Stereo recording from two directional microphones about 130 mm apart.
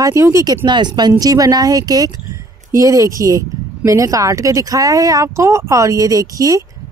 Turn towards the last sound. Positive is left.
turn(degrees=-25)  # may be behind; listen again after turning